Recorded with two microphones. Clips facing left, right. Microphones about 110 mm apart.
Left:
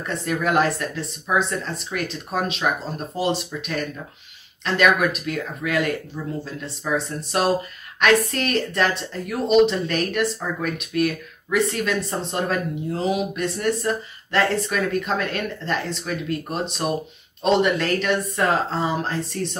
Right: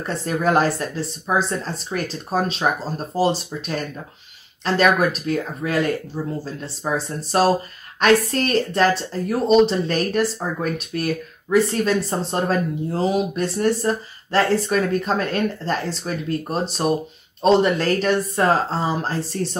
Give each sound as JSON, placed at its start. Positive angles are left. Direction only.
{"t": 0.0, "sound": "speech", "side_deg": -35}